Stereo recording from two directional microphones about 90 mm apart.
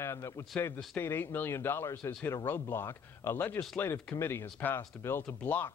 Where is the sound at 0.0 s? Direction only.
30° left (ahead or behind).